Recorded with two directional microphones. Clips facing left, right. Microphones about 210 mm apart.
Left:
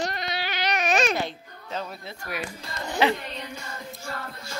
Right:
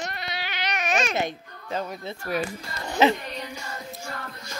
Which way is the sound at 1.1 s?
15° right (ahead or behind).